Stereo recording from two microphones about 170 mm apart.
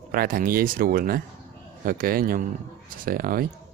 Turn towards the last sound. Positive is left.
turn(degrees=-60)  # may be behind; listen again after turning